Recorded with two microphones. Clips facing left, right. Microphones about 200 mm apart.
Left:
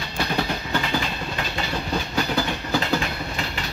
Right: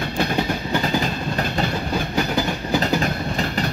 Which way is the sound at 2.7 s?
40° right (ahead or behind).